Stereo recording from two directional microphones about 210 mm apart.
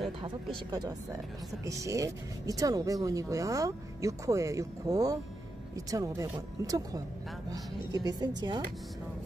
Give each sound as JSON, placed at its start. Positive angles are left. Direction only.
{"t": 0.2, "sound": "speech", "side_deg": -20}